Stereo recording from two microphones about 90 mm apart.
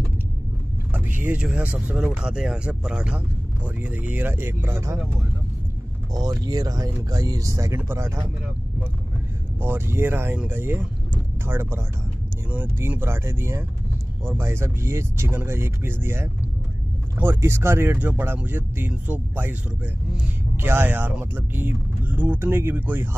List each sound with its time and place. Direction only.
0.9 s speech: 20° right (ahead or behind)
6.1 s speech: 50° right (ahead or behind)
7.7 s speech: 25° right (ahead or behind)
9.6 s speech: 25° right (ahead or behind)
20.5 s speech: 25° right (ahead or behind)